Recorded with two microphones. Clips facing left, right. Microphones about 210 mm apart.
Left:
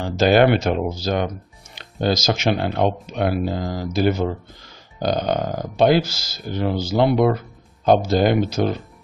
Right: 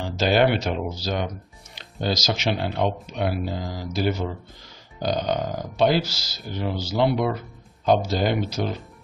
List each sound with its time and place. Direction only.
0.0 s speech: 50° left (ahead or behind)